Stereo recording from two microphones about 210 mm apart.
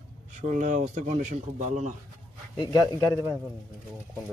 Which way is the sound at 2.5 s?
20° left (ahead or behind).